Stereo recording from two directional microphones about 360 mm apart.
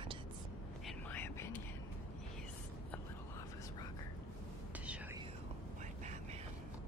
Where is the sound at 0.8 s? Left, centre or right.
Centre.